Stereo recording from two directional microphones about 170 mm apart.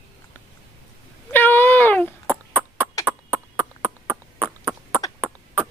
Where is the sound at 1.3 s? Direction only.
10° left (ahead or behind).